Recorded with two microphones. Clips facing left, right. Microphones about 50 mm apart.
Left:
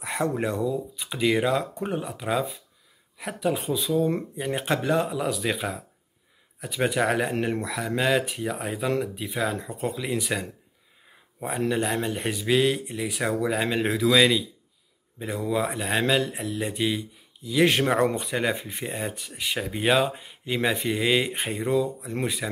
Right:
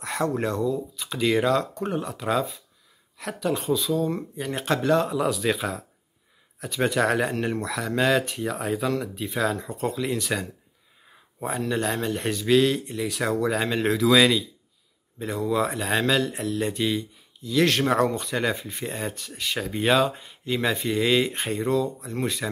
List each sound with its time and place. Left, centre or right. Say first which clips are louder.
0.0 s speech: right 1 dB; centre
11.7 s speech: right 2 dB; centre
18.9 s speech: even; centre